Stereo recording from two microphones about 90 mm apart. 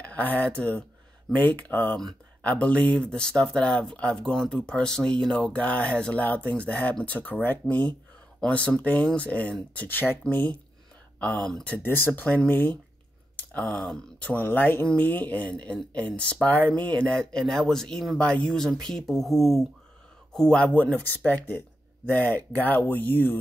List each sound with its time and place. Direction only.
0.0 s speech: 15° left (ahead or behind)
11.6 s speech: 20° left (ahead or behind)